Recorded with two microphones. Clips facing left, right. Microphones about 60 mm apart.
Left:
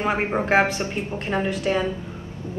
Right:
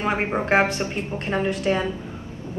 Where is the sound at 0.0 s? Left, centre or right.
Centre.